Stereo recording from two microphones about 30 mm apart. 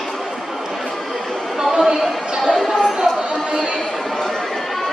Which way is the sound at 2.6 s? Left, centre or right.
Centre.